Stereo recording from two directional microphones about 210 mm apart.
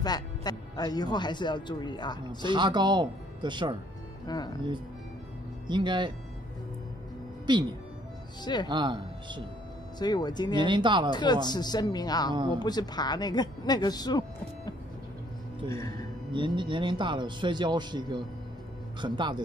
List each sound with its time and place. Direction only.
0.0 s speech: 20° left (ahead or behind)
2.2 s a man's voice: 20° right (ahead or behind)
4.3 s speech: 20° left (ahead or behind)
5.7 s a man's voice: 20° right (ahead or behind)
7.5 s a man's voice: 20° right (ahead or behind)
8.6 s a man's voice: 20° right (ahead or behind)
9.9 s speech: 20° left (ahead or behind)
10.6 s a man's voice: 20° right (ahead or behind)
11.1 s speech: 20° left (ahead or behind)
15.7 s speech: 15° left (ahead or behind)
16.3 s a man's voice: 20° right (ahead or behind)